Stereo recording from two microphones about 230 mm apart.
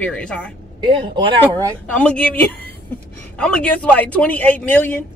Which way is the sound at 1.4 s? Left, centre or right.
Centre.